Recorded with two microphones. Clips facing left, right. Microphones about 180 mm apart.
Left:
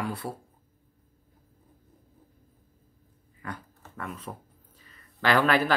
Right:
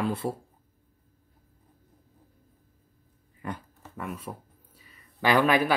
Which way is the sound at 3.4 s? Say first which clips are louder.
Right 3 dB; 20° right (ahead or behind).